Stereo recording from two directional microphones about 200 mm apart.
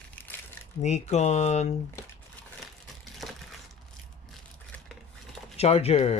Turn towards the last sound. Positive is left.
turn(degrees=30)  # may be behind; listen again after turning